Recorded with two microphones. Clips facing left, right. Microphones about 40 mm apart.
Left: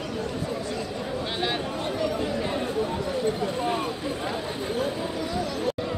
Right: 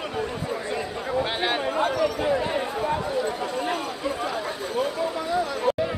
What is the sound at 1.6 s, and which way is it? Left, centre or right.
Chatter, right.